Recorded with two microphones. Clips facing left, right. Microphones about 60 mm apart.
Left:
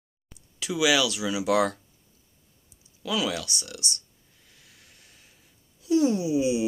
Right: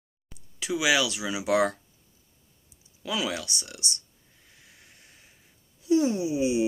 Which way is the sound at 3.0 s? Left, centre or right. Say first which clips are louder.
Left 2 dB; right.